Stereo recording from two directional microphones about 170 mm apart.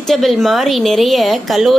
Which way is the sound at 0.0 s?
Centre (ahead or behind).